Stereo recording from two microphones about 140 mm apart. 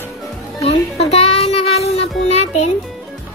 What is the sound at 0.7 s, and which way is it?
Music, 45° left (ahead or behind).